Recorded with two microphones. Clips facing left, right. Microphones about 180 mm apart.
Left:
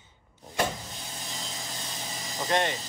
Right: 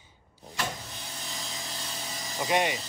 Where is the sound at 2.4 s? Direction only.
10° right (ahead or behind).